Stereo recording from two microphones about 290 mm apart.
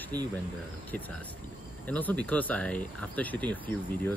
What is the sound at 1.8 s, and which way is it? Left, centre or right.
Speech, centre.